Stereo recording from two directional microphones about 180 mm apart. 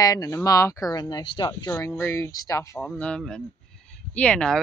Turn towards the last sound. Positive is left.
turn(degrees=5)  # may be behind; listen again after turning